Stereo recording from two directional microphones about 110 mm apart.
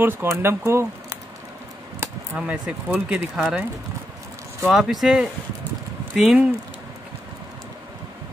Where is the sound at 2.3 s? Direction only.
10° right (ahead or behind).